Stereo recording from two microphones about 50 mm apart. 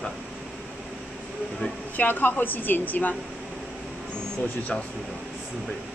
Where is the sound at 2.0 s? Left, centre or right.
Left.